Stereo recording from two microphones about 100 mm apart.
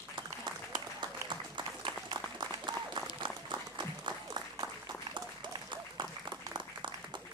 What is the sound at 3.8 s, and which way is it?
Applause, 45° right (ahead or behind).